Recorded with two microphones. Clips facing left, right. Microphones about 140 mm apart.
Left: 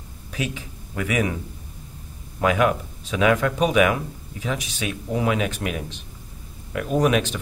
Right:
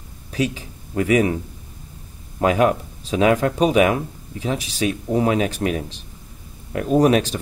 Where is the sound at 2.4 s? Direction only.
35° right (ahead or behind).